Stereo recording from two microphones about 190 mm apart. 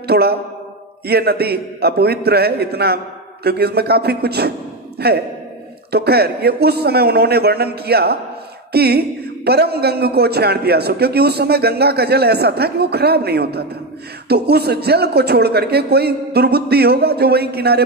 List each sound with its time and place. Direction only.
0.0 s a man's voice: 55° right (ahead or behind)